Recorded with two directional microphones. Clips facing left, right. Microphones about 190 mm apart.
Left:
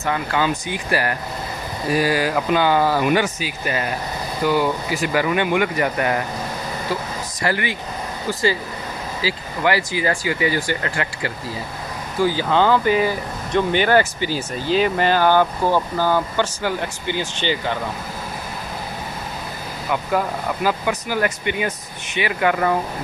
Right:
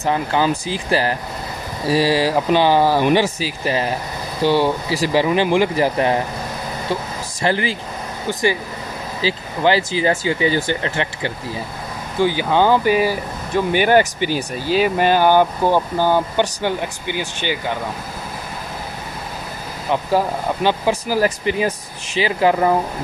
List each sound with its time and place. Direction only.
0.0 s speech: 30° right (ahead or behind)
7.4 s speech: 30° right (ahead or behind)
8.3 s speech: 20° right (ahead or behind)
19.9 s speech: 30° right (ahead or behind)